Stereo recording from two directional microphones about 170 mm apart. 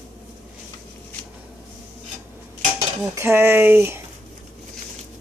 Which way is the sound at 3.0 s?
15° right (ahead or behind).